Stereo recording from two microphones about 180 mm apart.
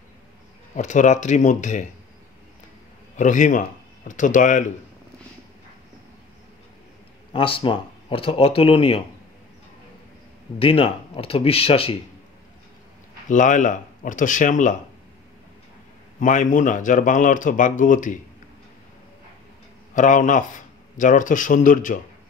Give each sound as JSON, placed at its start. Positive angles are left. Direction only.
{"t": 0.7, "sound": "speech", "side_deg": 40}
{"t": 3.2, "sound": "speech", "side_deg": 45}
{"t": 7.3, "sound": "speech", "side_deg": 30}
{"t": 10.6, "sound": "speech", "side_deg": 30}
{"t": 13.3, "sound": "speech", "side_deg": 45}
{"t": 16.2, "sound": "speech", "side_deg": 45}
{"t": 19.9, "sound": "speech", "side_deg": 45}